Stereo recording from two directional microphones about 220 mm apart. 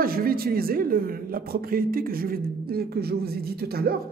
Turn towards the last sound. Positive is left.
turn(degrees=-45)  # may be behind; listen again after turning